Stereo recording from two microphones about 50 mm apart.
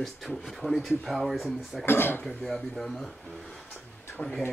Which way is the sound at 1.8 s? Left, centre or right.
Left.